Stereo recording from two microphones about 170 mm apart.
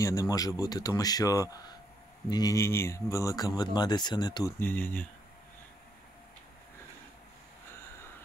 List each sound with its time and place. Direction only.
0.0 s speech: 20° left (ahead or behind)
4.6 s speech: 10° left (ahead or behind)